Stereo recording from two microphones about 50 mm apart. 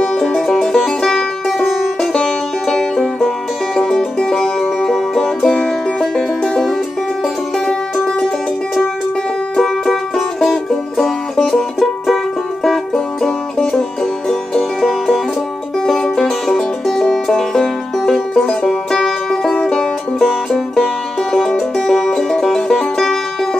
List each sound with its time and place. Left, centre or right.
0.0 s music: centre
9.6 s music: centre
14.8 s music: centre
18.6 s banjo: centre
19.6 s music: centre